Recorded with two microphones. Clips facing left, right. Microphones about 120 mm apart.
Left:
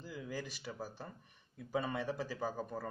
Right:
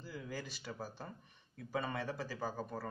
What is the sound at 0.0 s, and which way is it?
Speech, 10° left (ahead or behind).